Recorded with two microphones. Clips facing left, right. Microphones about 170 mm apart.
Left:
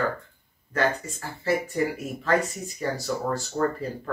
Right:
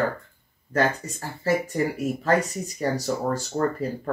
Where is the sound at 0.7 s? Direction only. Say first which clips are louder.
Right 2 dB; 40° right (ahead or behind).